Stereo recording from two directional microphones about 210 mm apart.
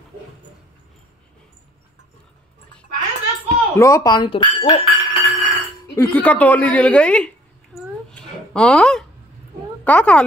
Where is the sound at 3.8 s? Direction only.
15° left (ahead or behind).